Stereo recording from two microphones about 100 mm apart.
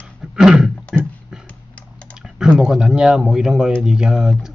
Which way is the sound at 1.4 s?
10° left (ahead or behind).